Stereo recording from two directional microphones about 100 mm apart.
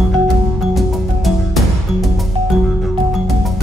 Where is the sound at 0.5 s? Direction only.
Centre (ahead or behind).